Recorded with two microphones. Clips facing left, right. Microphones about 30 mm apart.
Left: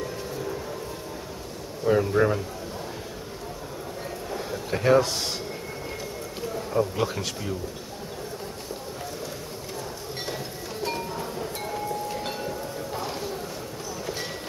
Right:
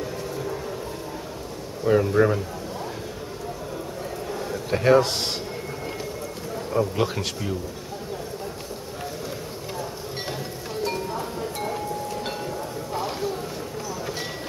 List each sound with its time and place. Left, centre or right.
1.9 s speech: centre
4.3 s a sound: centre
4.6 s speech: centre
5.0 s speech: right
6.7 s speech: centre
11.1 s a sound: centre